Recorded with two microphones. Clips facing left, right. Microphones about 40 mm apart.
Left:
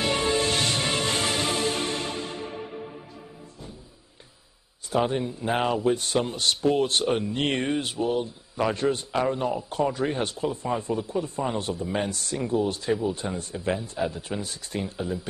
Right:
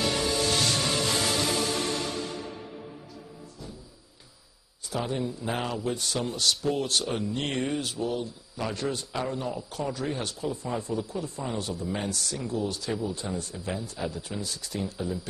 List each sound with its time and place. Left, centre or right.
0.0 s music: left
4.9 s a man's voice: left